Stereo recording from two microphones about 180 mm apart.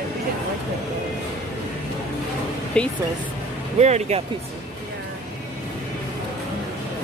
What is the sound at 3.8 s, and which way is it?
Speech, 40° right (ahead or behind).